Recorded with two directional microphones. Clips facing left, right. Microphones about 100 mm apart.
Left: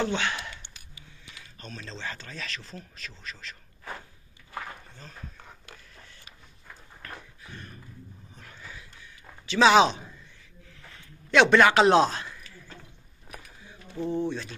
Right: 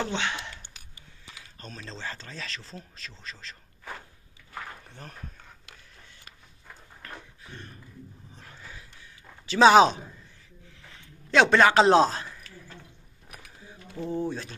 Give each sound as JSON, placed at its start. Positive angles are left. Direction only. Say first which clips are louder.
{"t": 0.0, "sound": "speech", "louder": "left 2 dB", "side_deg": -25}
{"t": 7.0, "sound": "a sound", "louder": "left 1 dB", "side_deg": -25}
{"t": 9.5, "sound": "speech", "louder": "right 2 dB", "side_deg": -35}
{"t": 11.2, "sound": "speech", "louder": "left 1 dB", "side_deg": -35}
{"t": 14.0, "sound": "speech", "louder": "left 1 dB", "side_deg": -5}